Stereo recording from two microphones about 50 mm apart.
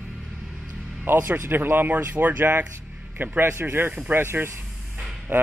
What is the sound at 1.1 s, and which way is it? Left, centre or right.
A man's voice, right.